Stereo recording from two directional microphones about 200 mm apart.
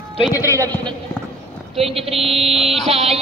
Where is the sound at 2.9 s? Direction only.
30° right (ahead or behind).